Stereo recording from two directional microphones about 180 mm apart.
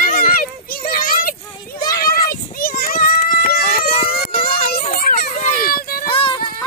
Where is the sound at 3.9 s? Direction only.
30° left (ahead or behind).